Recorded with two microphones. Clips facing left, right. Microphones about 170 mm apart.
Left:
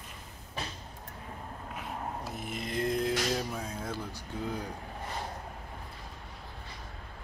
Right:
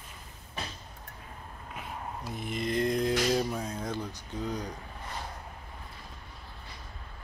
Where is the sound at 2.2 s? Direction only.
5° left (ahead or behind).